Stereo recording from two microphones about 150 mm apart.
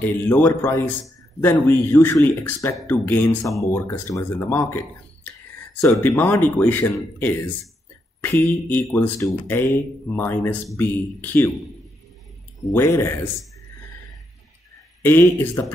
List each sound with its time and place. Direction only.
0.0 s speech: 15° left (ahead or behind)
12.7 s speech: 15° left (ahead or behind)
15.0 s speech: 15° left (ahead or behind)